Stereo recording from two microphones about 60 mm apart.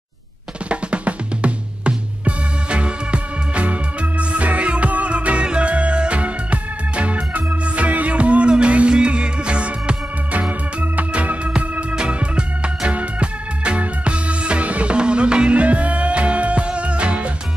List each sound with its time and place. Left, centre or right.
0.7 s drum: centre